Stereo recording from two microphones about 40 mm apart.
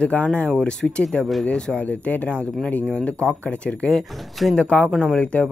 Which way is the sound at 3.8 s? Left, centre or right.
Centre.